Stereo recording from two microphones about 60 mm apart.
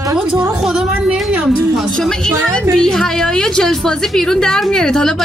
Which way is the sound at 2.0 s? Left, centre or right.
Centre.